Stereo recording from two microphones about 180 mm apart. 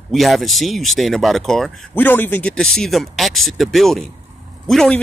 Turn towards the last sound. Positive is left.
turn(degrees=5)  # may be behind; listen again after turning